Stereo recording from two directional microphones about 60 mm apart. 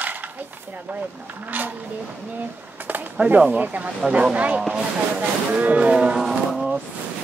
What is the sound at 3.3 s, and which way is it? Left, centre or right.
Speech, right.